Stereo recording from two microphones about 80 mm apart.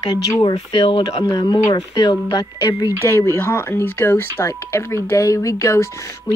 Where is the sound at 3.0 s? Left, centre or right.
Left.